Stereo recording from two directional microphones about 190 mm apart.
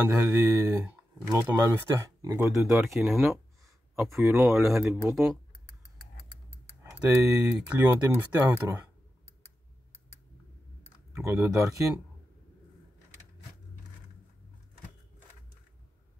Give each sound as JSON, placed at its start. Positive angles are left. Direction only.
{"t": 0.1, "sound": "speech", "side_deg": -20}
{"t": 2.7, "sound": "speech", "side_deg": -5}
{"t": 4.2, "sound": "speech", "side_deg": -15}
{"t": 4.6, "sound": "speech", "side_deg": 0}
{"t": 6.9, "sound": "speech", "side_deg": -5}
{"t": 11.1, "sound": "speech", "side_deg": -15}